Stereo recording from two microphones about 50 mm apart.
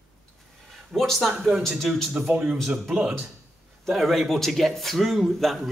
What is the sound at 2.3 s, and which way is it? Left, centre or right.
Speech, right.